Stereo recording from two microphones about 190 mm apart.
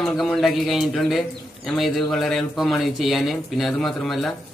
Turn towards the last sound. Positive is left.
turn(degrees=0)  # may be behind; listen again after turning